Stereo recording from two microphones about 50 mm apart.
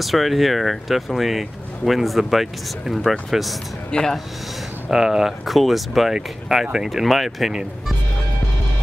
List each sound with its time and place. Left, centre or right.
0.0 s speech: centre
3.9 s speech: centre
4.8 s speech: centre
6.5 s speech: centre